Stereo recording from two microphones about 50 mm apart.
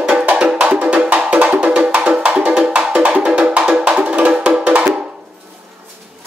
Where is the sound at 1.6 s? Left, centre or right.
Right.